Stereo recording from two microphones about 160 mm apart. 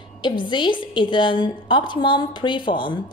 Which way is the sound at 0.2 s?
30° left (ahead or behind).